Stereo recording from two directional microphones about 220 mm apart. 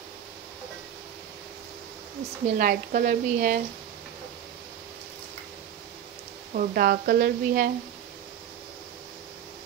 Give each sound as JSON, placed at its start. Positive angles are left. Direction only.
{"t": 2.5, "sound": "a woman's voice", "side_deg": -40}
{"t": 6.5, "sound": "speech", "side_deg": -40}